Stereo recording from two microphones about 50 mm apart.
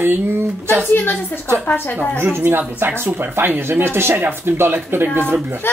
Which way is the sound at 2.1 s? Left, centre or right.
Right.